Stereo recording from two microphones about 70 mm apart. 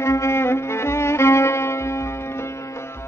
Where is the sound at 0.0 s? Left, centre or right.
Left.